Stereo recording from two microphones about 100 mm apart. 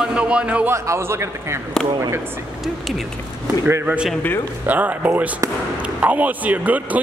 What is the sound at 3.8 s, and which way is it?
A man's voice, 10° right (ahead or behind).